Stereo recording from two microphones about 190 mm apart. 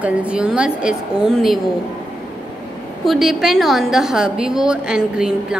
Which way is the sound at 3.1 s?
Centre (ahead or behind).